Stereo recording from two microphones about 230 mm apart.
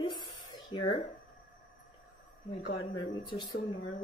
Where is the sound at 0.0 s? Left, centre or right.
Centre.